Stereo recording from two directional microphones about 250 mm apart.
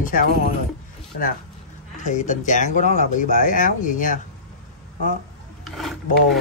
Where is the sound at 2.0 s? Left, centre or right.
Left.